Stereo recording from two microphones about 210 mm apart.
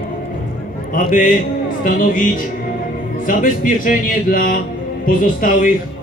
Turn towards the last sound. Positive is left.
turn(degrees=40)  # may be behind; listen again after turning